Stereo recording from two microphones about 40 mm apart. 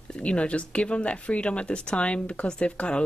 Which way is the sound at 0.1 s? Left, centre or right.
Left.